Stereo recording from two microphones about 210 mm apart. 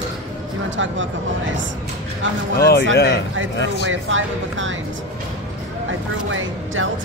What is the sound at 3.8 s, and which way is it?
Speech, 65° right (ahead or behind).